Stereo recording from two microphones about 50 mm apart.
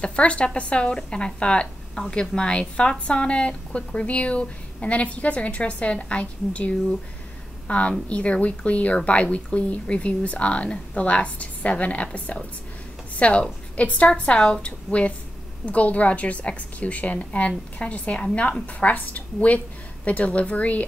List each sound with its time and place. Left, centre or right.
0.0 s a woman's voice: left